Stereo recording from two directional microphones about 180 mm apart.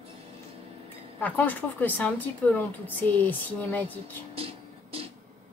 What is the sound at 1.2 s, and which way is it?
Speech, 10° left (ahead or behind).